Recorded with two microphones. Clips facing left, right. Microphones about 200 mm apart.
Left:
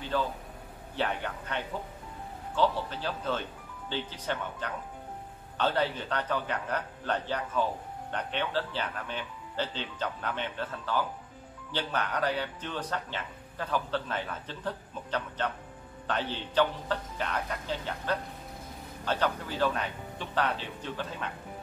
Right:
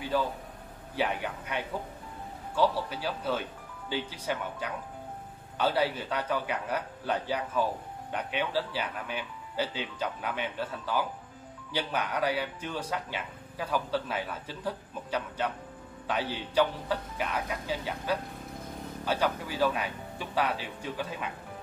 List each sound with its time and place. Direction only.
0.1 s a man's voice: 10° right (ahead or behind)